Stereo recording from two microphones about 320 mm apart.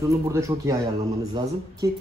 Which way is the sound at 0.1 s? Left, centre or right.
Centre.